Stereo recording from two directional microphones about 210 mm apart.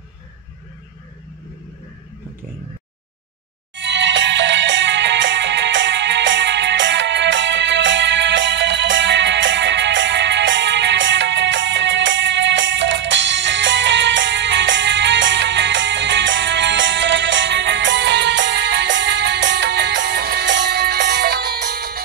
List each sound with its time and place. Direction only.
3.7 s music: 60° right (ahead or behind)